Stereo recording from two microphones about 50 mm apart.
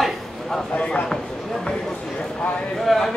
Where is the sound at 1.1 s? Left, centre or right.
Centre.